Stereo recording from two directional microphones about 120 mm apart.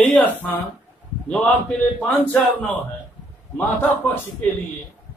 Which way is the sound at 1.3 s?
10° left (ahead or behind).